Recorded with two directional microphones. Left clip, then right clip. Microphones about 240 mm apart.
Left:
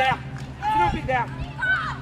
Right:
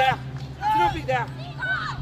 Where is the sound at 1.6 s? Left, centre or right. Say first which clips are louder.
Left 4 dB; centre.